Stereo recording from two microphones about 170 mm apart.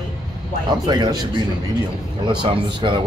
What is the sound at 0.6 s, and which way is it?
Speech, 25° right (ahead or behind).